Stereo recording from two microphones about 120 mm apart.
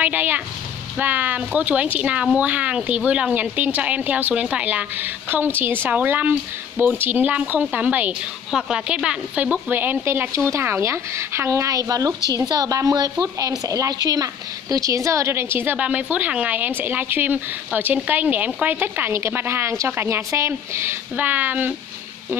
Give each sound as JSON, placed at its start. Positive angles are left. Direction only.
{"t": 0.0, "sound": "a woman's voice", "side_deg": -15}